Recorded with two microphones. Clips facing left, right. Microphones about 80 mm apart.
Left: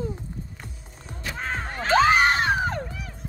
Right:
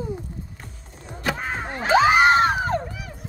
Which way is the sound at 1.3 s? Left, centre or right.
Centre.